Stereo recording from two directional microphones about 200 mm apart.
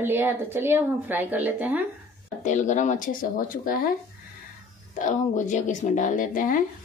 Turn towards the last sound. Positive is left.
turn(degrees=40)  # may be behind; listen again after turning